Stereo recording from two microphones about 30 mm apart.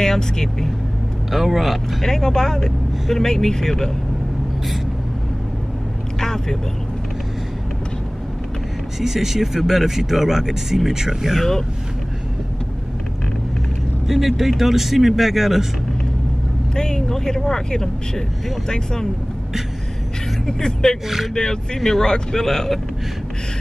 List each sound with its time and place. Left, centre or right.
0.0 s speech: centre
1.3 s speech: centre
2.0 s speech: centre
6.1 s speech: centre
9.0 s speech: centre
14.0 s speech: centre
16.7 s speech: left
20.4 s speech: centre